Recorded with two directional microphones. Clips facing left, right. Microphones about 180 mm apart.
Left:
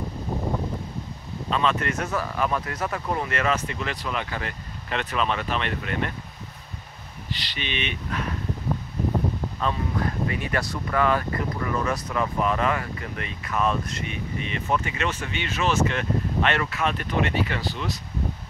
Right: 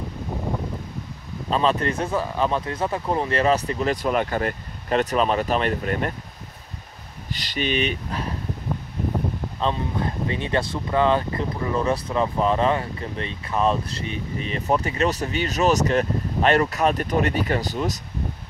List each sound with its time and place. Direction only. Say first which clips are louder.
1.5 s speech: right 3 dB; 35° right (ahead or behind)
7.2 s speech: right 7 dB; 45° right (ahead or behind)
9.6 s speech: right 3 dB; 25° right (ahead or behind); by 18.0 s 45° right (ahead or behind)